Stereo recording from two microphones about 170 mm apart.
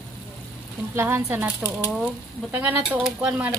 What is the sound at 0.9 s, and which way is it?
Speech, 15° right (ahead or behind).